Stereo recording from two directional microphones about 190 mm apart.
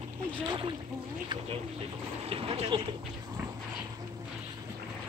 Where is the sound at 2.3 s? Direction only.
30° right (ahead or behind).